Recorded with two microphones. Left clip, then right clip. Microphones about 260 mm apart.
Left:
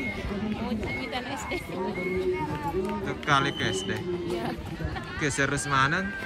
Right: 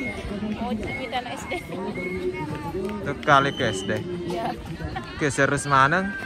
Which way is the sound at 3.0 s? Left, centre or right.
Centre.